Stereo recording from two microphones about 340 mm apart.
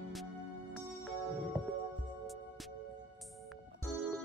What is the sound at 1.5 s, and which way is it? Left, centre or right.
Music, centre.